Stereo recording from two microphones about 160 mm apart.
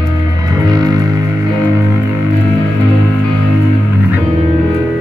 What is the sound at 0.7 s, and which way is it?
Music, 25° right (ahead or behind).